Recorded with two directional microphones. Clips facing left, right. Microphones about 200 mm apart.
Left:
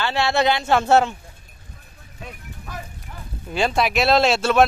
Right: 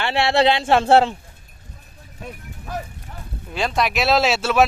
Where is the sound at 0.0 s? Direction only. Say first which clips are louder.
Right 2 dB; 30° right (ahead or behind).